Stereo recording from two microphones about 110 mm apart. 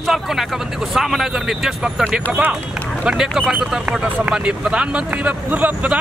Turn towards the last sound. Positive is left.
turn(degrees=-15)  # may be behind; listen again after turning